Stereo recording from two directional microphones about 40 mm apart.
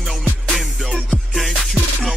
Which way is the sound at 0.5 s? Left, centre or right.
Centre.